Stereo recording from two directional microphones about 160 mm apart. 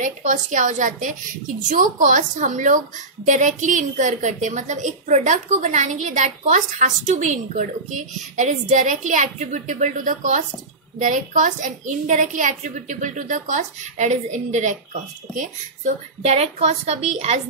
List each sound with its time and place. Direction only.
0.0 s a woman's voice: 50° right (ahead or behind)